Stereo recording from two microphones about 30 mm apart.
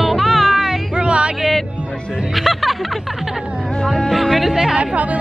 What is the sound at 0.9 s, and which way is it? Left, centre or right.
Music, right.